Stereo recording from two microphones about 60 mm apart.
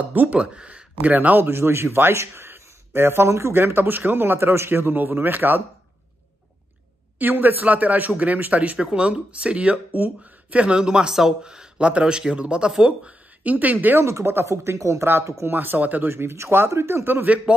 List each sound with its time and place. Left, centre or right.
0.1 s speech: right
0.4 s speech: centre
1.0 s a man's voice: right
7.2 s a man's voice: right
13.9 s speech: right
14.5 s speech: right
15.5 s a man's voice: right
16.1 s speech: right